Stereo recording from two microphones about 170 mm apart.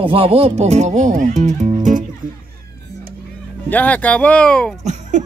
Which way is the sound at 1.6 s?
45° right (ahead or behind).